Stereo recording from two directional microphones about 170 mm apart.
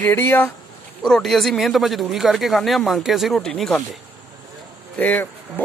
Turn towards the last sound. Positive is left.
turn(degrees=10)  # may be behind; listen again after turning